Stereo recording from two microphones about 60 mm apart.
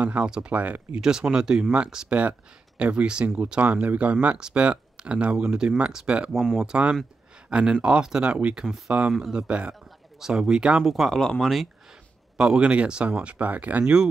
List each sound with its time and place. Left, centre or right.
0.0 s speech: centre
1.0 s speech: centre
6.3 s speech: centre
6.6 s speech: centre
8.6 s speech: centre
9.3 s speech: centre
10.8 s speech: centre
12.4 s speech: centre